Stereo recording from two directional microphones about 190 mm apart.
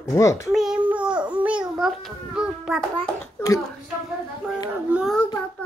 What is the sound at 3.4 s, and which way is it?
Speech, 15° left (ahead or behind).